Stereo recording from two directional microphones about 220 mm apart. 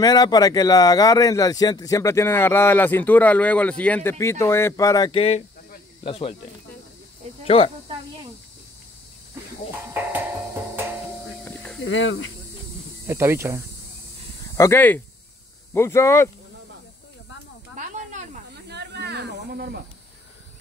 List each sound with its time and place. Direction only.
0.0 s speech: 20° left (ahead or behind)
7.4 s speech: 25° left (ahead or behind)
11.4 s snake: 5° left (ahead or behind)
11.8 s speech: 60° left (ahead or behind)
13.0 s speech: 10° right (ahead or behind)
14.6 s speech: 10° left (ahead or behind)
17.7 s snake: 35° right (ahead or behind)
18.7 s a sound: 50° right (ahead or behind)